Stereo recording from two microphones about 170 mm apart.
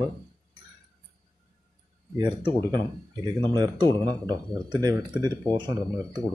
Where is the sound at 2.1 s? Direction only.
25° right (ahead or behind).